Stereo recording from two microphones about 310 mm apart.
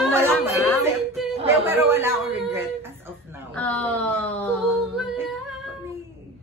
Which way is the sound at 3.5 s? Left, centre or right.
Centre.